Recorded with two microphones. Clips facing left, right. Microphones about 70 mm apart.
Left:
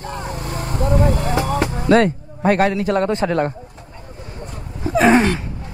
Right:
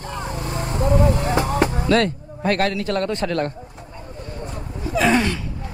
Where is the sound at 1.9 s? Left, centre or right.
Centre.